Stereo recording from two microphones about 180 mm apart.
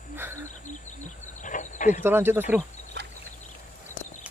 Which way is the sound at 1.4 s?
45° left (ahead or behind).